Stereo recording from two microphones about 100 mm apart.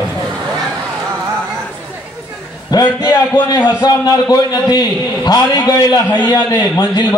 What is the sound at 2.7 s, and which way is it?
A man's voice, 45° left (ahead or behind).